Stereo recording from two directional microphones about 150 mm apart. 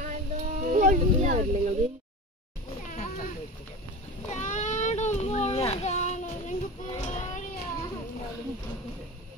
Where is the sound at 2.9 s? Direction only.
60° left (ahead or behind).